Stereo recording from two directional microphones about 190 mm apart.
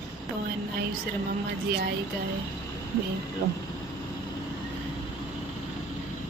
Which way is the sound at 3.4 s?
60° right (ahead or behind).